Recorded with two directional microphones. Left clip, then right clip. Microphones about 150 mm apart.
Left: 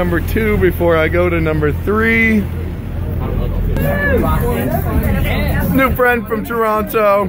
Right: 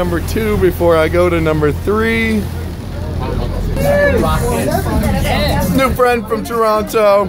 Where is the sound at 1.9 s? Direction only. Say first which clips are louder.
Left 5 dB; 15° right (ahead or behind).